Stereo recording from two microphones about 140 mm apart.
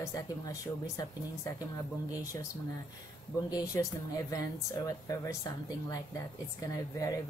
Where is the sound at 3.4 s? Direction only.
25° left (ahead or behind).